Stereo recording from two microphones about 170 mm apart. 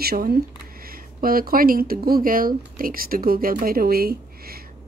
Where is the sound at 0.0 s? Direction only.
65° right (ahead or behind).